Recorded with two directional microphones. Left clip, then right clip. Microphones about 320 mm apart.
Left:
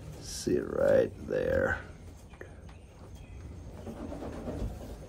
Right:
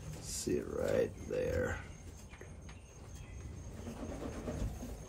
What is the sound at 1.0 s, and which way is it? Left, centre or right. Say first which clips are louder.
Speech: left 6 dB; centre.